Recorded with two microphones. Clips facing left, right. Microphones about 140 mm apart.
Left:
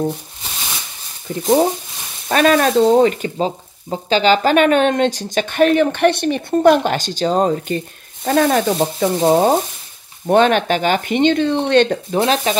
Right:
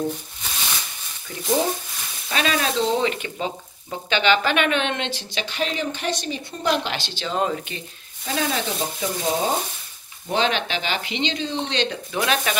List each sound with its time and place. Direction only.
1.3 s speech: 30° left (ahead or behind)
2.2 s speech: 50° left (ahead or behind)
12.1 s speech: 30° left (ahead or behind)